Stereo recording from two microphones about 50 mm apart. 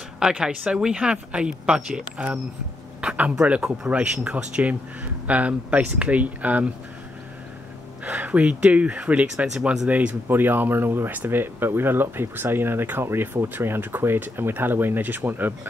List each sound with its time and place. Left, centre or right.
0.2 s speech: centre
3.0 s a sound: right
3.6 s speech: centre
3.9 s speech: right
8.4 s speech: right
10.2 s speech: right